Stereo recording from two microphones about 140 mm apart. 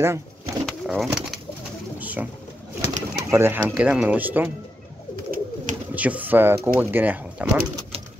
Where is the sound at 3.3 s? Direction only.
15° right (ahead or behind).